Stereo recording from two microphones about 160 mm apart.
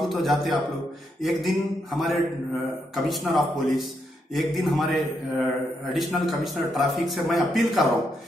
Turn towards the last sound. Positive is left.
turn(degrees=0)  # may be behind; listen again after turning